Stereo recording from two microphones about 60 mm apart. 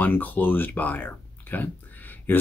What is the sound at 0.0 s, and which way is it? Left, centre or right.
Speech, left.